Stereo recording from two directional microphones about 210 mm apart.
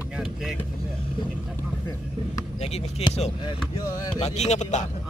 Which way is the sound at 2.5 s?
30° left (ahead or behind).